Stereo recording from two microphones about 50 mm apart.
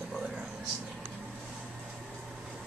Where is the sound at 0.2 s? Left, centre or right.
Centre.